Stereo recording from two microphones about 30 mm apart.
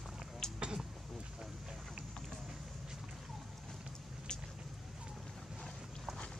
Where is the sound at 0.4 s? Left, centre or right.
Left.